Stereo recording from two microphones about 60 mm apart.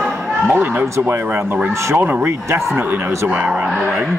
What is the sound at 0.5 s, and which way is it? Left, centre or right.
Speech, right.